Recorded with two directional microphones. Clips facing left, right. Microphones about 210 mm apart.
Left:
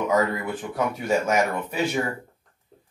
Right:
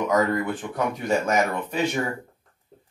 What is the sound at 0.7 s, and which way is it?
Speech, 5° left (ahead or behind).